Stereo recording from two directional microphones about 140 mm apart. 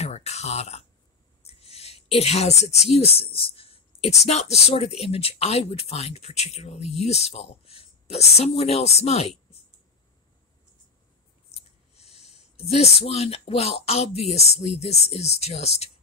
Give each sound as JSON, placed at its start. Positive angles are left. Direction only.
{"t": 0.0, "sound": "a sound", "side_deg": 50}
{"t": 1.4, "sound": "a woman's voice", "side_deg": 45}
{"t": 11.9, "sound": "speech", "side_deg": 45}